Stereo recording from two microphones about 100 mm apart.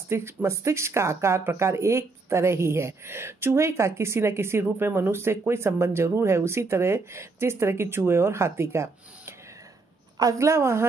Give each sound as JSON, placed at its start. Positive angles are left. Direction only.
{"t": 0.1, "sound": "speech", "side_deg": -25}